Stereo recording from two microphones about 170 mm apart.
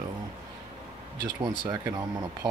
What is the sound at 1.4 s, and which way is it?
Speech, 25° right (ahead or behind).